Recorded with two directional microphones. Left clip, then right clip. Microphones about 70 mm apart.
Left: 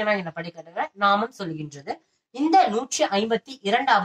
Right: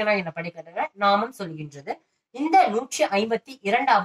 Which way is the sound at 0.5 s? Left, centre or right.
Left.